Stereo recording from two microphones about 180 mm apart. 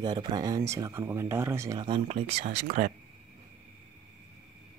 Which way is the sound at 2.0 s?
35° right (ahead or behind).